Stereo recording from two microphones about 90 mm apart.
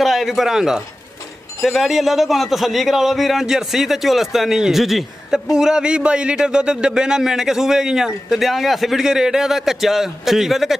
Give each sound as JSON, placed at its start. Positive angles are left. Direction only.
{"t": 0.0, "sound": "a man's voice", "side_deg": 0}